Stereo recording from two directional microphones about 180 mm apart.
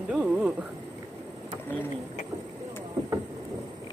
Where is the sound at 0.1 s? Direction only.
5° right (ahead or behind).